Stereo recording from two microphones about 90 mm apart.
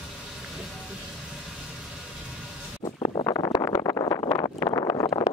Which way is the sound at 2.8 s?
90° left.